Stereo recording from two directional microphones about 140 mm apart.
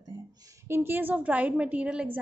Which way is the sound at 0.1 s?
30° right (ahead or behind).